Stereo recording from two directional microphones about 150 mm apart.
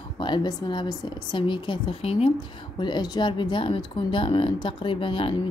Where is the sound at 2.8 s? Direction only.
30° left (ahead or behind).